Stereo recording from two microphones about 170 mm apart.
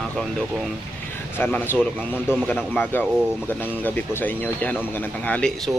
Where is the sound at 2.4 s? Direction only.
5° left (ahead or behind).